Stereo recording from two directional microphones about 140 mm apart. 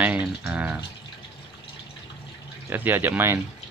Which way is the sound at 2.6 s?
15° right (ahead or behind).